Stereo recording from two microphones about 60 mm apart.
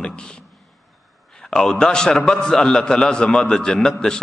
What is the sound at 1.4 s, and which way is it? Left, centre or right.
A man's voice, centre.